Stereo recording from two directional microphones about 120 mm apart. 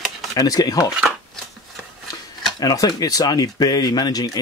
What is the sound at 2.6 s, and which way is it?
Speech, 35° left (ahead or behind).